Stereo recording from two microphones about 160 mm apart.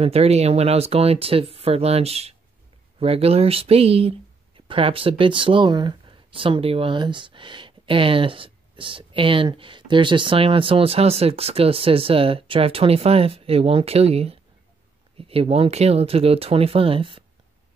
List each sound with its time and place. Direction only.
0.0 s speech: 40° right (ahead or behind)